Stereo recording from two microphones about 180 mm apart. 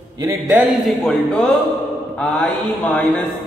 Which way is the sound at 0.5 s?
Centre (ahead or behind).